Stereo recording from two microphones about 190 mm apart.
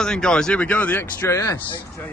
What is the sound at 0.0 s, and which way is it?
Speech, 5° left (ahead or behind).